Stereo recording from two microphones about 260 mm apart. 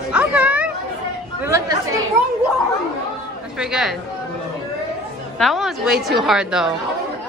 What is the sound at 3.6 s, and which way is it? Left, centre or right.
Speech, centre.